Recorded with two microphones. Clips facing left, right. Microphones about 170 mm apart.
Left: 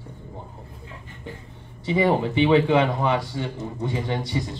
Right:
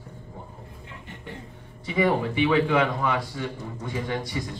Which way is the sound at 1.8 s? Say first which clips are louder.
Left 3 dB; 25° left (ahead or behind).